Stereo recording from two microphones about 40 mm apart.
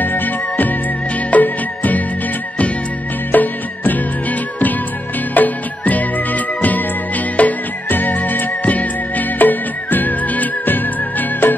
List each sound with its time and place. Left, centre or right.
0.0 s music: left
3.3 s music: left